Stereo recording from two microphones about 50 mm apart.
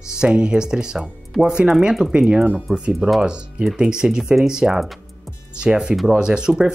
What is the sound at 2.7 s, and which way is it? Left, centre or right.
Speech, right.